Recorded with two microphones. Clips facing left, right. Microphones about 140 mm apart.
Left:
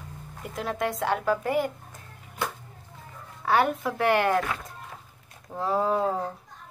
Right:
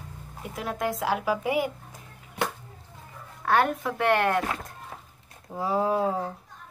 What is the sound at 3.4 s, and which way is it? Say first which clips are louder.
Speech: even; centre (ahead or behind).